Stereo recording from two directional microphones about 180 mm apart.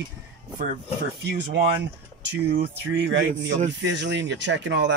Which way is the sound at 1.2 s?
75° right (ahead or behind).